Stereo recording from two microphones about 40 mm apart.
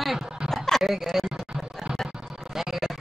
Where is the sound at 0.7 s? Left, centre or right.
Centre.